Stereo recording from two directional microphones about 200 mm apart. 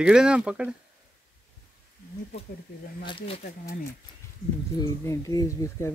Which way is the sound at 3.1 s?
25° left (ahead or behind).